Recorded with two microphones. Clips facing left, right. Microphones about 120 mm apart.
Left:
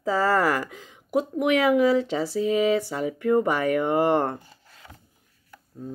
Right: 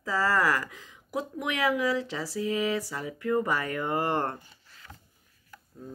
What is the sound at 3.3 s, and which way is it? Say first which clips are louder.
Speech: left 6 dB; 15° left (ahead or behind).